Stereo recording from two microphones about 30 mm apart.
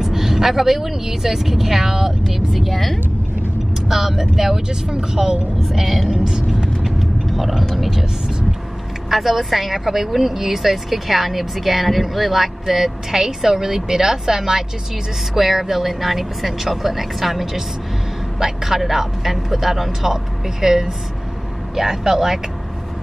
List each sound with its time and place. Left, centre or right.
0.0 s a woman's voice: centre
3.9 s a woman's voice: centre
4.6 s speech: right
5.7 s a woman's voice: centre
6.8 s vehicle: centre
7.7 s speech: centre
9.1 s a woman's voice: centre
15.3 s a woman's voice: centre
20.1 s a woman's voice: centre